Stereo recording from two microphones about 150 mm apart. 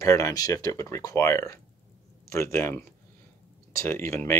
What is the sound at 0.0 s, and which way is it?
Speech, 20° left (ahead or behind).